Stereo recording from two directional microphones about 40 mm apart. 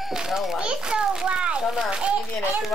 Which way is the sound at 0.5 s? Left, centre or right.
Right.